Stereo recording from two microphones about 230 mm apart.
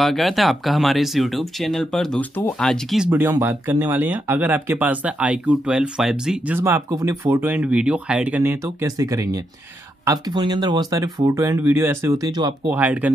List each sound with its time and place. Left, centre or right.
0.0 s speech: centre
12.7 s speech: centre